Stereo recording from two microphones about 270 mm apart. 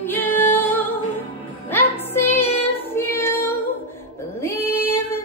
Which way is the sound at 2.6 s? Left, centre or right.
Centre.